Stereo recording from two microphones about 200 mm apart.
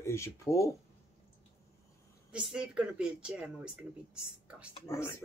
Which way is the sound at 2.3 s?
5° right (ahead or behind).